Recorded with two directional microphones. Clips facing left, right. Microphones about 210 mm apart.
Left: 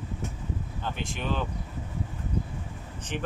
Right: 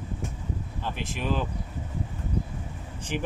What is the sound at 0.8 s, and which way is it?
Speech, centre (ahead or behind).